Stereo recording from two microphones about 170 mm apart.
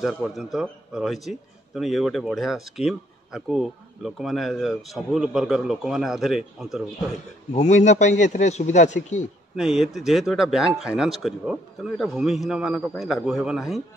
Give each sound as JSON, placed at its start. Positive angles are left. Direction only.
{"t": 0.0, "sound": "speech", "side_deg": 0}
{"t": 7.5, "sound": "a man's voice", "side_deg": 45}
{"t": 9.6, "sound": "speech", "side_deg": -5}